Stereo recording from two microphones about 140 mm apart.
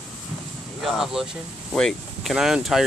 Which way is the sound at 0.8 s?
Centre (ahead or behind).